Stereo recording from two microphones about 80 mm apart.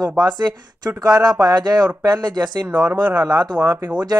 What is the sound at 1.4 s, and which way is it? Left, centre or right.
Speech, right.